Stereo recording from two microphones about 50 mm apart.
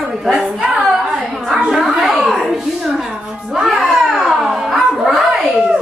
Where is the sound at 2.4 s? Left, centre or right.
Centre.